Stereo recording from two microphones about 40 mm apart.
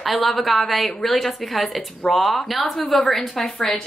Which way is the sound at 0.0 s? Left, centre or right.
Centre.